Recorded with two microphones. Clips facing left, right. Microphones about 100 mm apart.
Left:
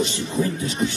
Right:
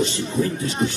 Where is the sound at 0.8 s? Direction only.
30° right (ahead or behind).